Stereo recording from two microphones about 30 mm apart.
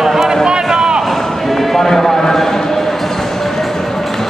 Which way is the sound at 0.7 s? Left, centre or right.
Right.